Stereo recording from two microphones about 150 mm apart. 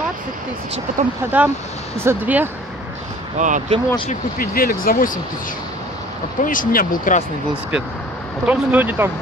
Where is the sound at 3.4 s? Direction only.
55° right (ahead or behind).